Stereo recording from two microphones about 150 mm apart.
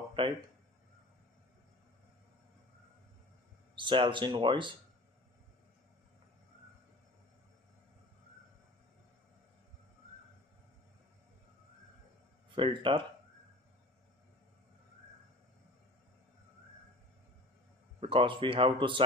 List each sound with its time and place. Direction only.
0.2 s speech: 35° right (ahead or behind)
3.7 s speech: 35° right (ahead or behind)
12.4 s speech: 35° right (ahead or behind)
18.0 s speech: 35° right (ahead or behind)